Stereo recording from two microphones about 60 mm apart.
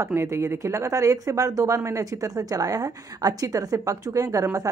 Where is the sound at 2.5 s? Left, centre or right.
Right.